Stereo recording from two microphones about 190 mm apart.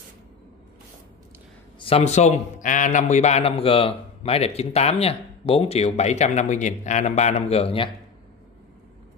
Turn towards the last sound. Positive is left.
turn(degrees=30)  # may be behind; listen again after turning